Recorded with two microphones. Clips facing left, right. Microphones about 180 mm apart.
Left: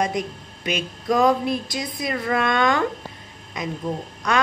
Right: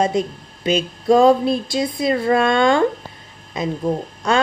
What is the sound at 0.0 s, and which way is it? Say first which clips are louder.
A woman's voice: right 5 dB; 30° right (ahead or behind).